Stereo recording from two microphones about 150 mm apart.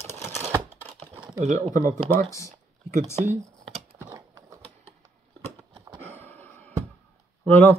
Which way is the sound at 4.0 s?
20° right (ahead or behind).